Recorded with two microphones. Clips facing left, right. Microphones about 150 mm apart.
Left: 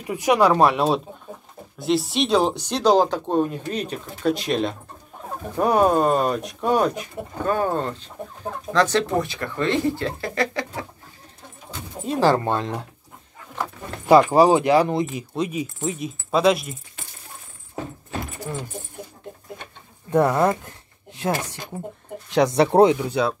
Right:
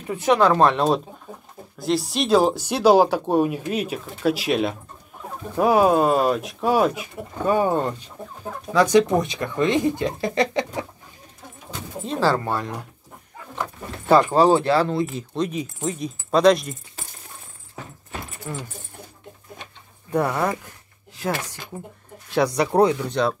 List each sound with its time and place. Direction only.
0.0 s speech: 10° left (ahead or behind); by 10.9 s 20° right (ahead or behind)
12.1 s speech: 15° left (ahead or behind)
14.0 s speech: 10° left (ahead or behind)
20.1 s speech: 20° left (ahead or behind)
22.3 s speech: 20° left (ahead or behind)
22.9 s speech: 5° left (ahead or behind)